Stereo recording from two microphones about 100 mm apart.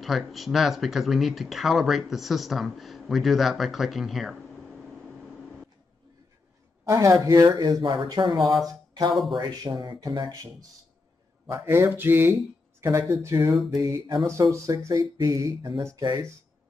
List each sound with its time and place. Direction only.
0.0 s speech: centre (ahead or behind)
6.9 s speech: 30° right (ahead or behind)
7.8 s speech: 50° right (ahead or behind)
11.4 s speech: 25° right (ahead or behind)
13.8 s speech: 45° right (ahead or behind)
14.2 s speech: 30° right (ahead or behind)